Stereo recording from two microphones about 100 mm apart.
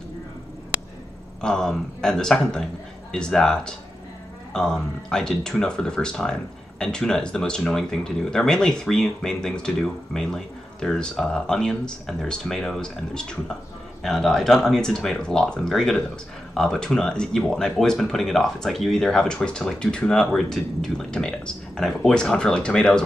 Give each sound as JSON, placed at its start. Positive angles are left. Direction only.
{"t": 1.4, "sound": "speech", "side_deg": 5}